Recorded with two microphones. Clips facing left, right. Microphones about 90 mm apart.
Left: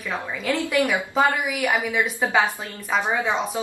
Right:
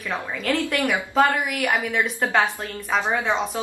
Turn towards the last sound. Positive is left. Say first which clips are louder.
# even
turn(degrees=5)  # may be behind; listen again after turning